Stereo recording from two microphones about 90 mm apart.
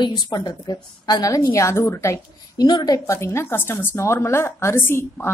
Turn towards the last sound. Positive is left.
turn(degrees=25)  # may be behind; listen again after turning